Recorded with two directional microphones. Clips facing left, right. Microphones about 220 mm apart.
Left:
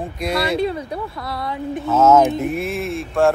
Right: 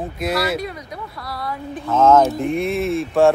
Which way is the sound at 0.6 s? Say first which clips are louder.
Left 7 dB; 30° left (ahead or behind).